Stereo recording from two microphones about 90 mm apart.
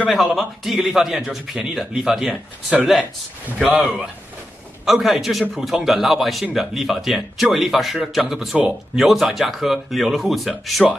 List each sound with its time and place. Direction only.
0.1 s a man's voice: centre (ahead or behind)
3.6 s speech: 15° right (ahead or behind)
4.8 s a man's voice: 5° right (ahead or behind)